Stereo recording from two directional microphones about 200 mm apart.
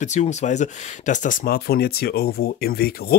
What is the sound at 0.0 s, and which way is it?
Speech, 35° left (ahead or behind).